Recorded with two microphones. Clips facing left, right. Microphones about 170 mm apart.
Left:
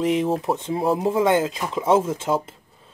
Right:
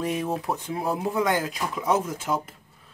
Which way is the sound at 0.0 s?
20° left (ahead or behind).